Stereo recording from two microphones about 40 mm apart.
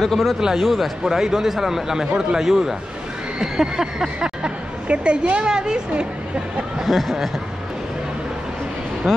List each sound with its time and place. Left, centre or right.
0.0 s speech: centre
1.0 s speech: centre
3.3 s a sound: centre
4.8 s a woman's voice: right
6.9 s speech: centre